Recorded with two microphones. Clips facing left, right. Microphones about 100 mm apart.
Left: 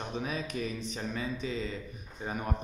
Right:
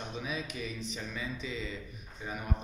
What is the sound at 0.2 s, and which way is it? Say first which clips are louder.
A man's voice: left 3 dB; 45° left (ahead or behind).